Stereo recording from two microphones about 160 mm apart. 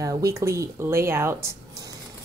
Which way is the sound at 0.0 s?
20° right (ahead or behind).